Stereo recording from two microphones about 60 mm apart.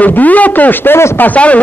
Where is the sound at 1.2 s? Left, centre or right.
Left.